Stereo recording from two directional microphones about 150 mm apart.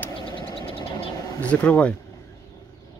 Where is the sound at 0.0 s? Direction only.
15° left (ahead or behind).